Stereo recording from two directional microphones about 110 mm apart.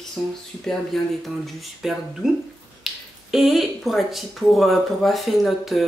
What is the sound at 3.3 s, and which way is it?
Speech, centre (ahead or behind).